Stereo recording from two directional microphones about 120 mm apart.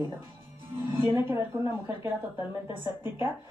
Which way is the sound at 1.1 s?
20° right (ahead or behind).